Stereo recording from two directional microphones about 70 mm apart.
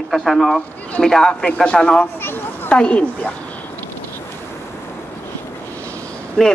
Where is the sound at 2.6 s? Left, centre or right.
Centre.